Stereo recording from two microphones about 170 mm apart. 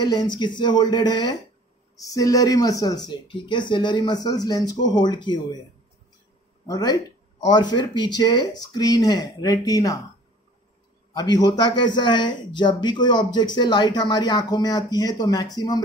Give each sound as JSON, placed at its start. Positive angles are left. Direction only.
{"t": 0.0, "sound": "a man's voice", "side_deg": 25}
{"t": 6.7, "sound": "a man's voice", "side_deg": 20}
{"t": 11.1, "sound": "a man's voice", "side_deg": 25}